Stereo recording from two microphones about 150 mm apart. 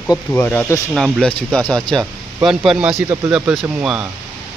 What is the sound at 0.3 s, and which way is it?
Speech, 10° left (ahead or behind).